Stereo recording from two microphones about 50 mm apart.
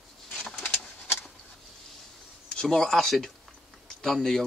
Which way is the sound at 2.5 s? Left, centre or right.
Centre.